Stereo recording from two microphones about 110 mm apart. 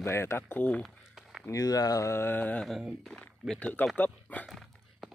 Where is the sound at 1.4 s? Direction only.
35° left (ahead or behind); by 3.9 s 15° left (ahead or behind).